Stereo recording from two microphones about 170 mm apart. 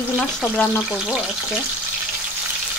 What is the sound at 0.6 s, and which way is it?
Speech, 10° left (ahead or behind).